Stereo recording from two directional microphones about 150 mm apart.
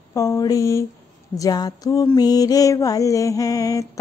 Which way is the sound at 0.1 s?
20° left (ahead or behind).